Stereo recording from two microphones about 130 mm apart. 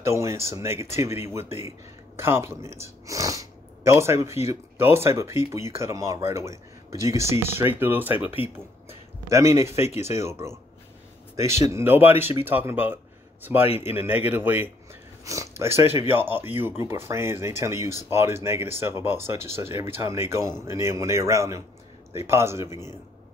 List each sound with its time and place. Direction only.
0.0 s speech: 20° right (ahead or behind)